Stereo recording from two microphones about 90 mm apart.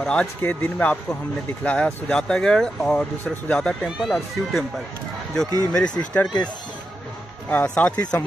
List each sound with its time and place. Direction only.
0.0 s speech: 10° left (ahead or behind)
3.8 s speech: centre (ahead or behind)
5.7 s speech: 10° left (ahead or behind)
7.4 s speech: 15° left (ahead or behind)